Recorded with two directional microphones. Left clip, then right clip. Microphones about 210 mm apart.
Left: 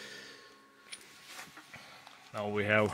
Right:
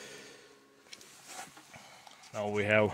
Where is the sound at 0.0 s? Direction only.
20° right (ahead or behind).